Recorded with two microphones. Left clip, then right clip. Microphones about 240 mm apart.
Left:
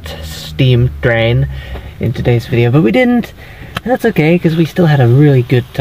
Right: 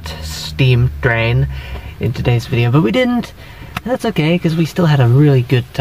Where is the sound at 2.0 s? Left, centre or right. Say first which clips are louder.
Left 4 dB; centre.